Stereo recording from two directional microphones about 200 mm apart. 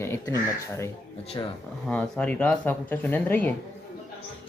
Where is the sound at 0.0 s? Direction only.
15° left (ahead or behind).